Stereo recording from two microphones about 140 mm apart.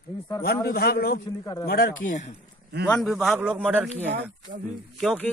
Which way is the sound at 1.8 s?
70° left (ahead or behind).